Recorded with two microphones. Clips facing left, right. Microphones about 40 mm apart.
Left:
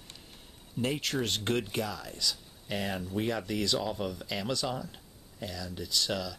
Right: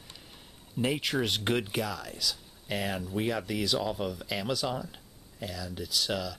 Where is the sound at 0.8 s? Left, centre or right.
Centre.